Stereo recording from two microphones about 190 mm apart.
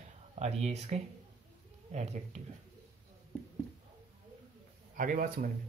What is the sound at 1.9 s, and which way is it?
Speech, 35° right (ahead or behind).